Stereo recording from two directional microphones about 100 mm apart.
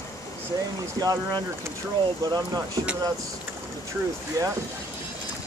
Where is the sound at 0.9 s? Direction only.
40° right (ahead or behind).